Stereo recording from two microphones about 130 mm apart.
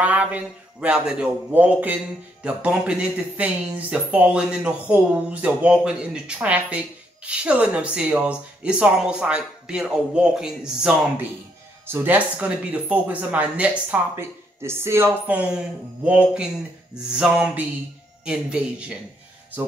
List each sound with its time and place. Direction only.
0.0 s speech: 10° right (ahead or behind)